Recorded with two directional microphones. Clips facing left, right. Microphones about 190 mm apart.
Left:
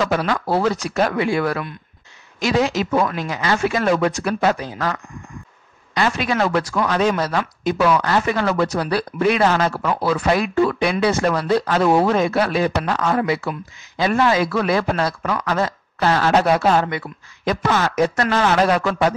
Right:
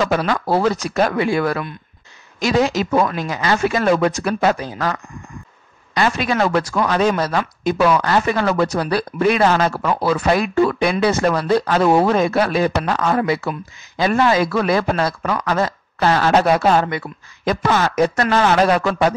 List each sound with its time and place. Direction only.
0.0 s speech: 40° right (ahead or behind)
5.9 s speech: 40° right (ahead or behind)